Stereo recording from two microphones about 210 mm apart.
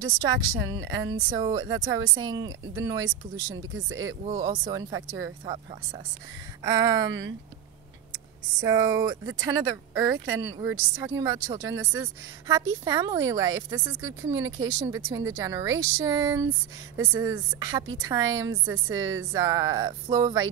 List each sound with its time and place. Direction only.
0.7 s a woman's voice: 20° right (ahead or behind)
4.4 s a woman's voice: 20° right (ahead or behind)
6.6 s speech: 15° right (ahead or behind)
8.5 s speech: 20° right (ahead or behind)